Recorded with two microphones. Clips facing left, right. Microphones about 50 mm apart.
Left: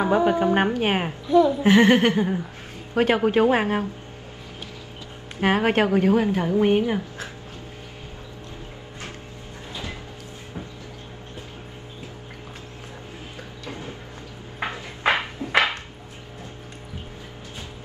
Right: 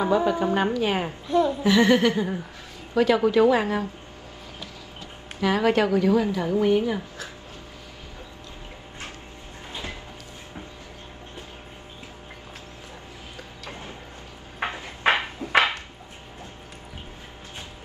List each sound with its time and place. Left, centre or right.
0.0 s a woman's voice: left
1.3 s speech: centre
1.6 s a woman's voice: left
5.4 s a woman's voice: left
14.6 s a sound: right